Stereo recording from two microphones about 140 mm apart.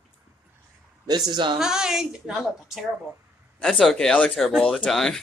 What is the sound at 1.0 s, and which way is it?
Speech, 30° right (ahead or behind).